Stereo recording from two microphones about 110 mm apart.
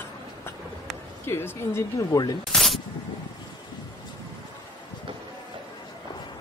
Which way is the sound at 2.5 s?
Centre (ahead or behind).